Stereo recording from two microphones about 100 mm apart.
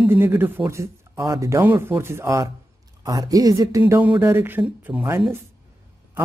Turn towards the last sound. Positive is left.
turn(degrees=-20)  # may be behind; listen again after turning